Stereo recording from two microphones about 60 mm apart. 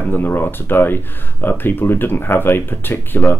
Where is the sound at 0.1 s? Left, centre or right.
Left.